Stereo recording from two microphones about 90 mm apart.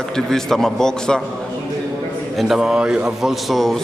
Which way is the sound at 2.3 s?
5° right (ahead or behind).